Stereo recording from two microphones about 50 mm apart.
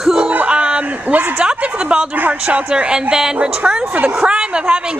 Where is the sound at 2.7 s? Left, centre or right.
Centre.